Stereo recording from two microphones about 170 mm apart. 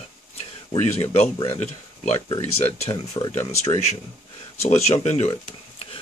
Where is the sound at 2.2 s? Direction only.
25° left (ahead or behind).